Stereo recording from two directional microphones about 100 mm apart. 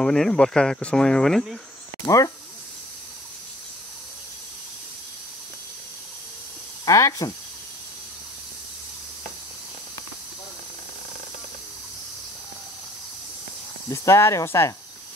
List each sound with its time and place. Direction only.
0.0 s speech: 5° left (ahead or behind)
2.0 s speech: 35° left (ahead or behind)
6.9 s speech: 30° left (ahead or behind)
13.8 s speech: 30° left (ahead or behind)